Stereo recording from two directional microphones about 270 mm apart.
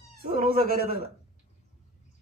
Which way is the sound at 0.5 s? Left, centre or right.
Right.